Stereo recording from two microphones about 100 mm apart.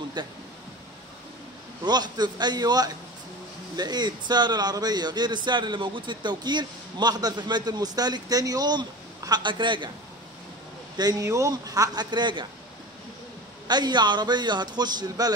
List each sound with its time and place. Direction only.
0.2 s speech: 45° right (ahead or behind)
1.9 s speech: 45° right (ahead or behind)
11.0 s speech: 40° right (ahead or behind)
13.7 s speech: 45° right (ahead or behind)